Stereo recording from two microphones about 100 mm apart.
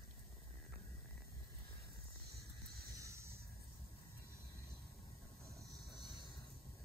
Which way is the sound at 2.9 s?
30° right (ahead or behind).